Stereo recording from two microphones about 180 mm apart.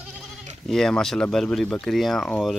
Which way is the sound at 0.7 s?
5° left (ahead or behind).